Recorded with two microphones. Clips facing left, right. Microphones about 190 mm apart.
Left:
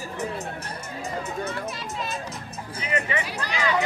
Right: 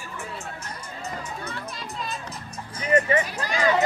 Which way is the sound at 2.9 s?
45° right (ahead or behind).